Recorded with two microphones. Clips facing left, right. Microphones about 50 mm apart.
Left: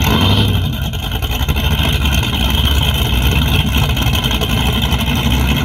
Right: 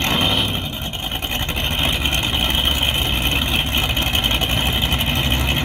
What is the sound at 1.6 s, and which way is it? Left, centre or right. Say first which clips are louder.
Vehicle: left 3 dB; centre.